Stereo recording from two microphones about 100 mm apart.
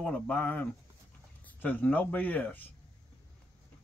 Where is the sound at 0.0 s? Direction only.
10° left (ahead or behind).